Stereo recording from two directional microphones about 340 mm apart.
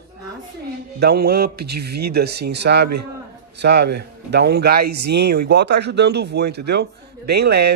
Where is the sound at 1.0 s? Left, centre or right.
Right.